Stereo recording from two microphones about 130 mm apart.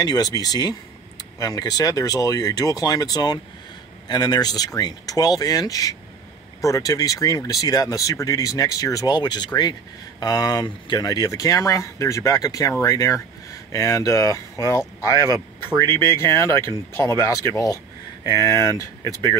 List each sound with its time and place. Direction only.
0.0 s speech: 30° left (ahead or behind)